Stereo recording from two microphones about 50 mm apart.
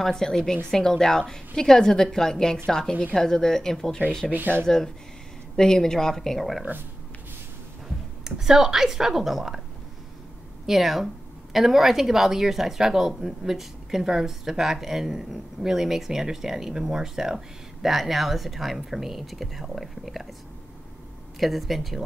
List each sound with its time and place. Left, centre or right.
0.0 s a woman's voice: centre
3.0 s speech: left
3.3 s a woman's voice: centre
4.3 s speech: right
4.6 s a woman's voice: centre
8.2 s speech: centre
10.7 s speech: centre
21.4 s speech: centre